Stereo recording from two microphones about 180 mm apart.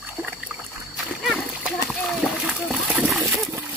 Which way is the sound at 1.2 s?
Centre (ahead or behind).